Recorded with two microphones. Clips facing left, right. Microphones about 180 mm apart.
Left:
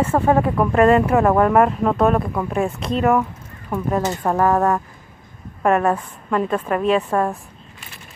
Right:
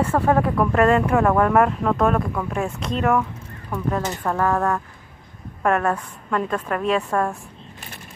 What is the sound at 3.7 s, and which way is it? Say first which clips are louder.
A woman's voice: left 3 dB; 20° left (ahead or behind).